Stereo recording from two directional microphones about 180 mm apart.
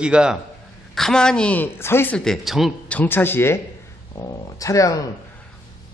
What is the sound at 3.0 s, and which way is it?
Speech, 10° left (ahead or behind).